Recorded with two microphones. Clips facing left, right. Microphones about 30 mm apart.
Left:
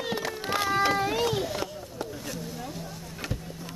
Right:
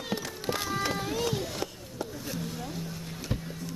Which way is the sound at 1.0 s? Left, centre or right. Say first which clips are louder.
Left 5 dB; left.